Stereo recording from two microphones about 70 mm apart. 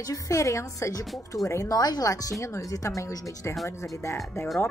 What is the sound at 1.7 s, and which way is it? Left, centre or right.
Speech, left.